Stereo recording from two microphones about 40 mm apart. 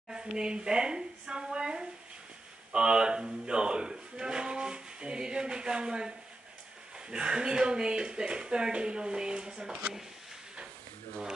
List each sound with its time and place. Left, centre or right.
0.1 s speech: centre